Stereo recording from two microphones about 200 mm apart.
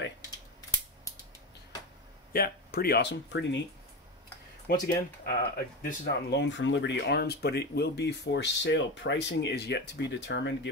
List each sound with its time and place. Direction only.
2.3 s speech: 50° left (ahead or behind)
4.8 s speech: 45° left (ahead or behind)